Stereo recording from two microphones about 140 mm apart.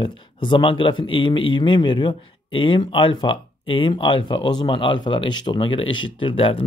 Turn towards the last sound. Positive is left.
turn(degrees=40)  # may be behind; listen again after turning